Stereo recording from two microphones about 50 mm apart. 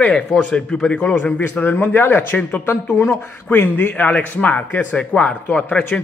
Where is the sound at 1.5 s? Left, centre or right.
Left.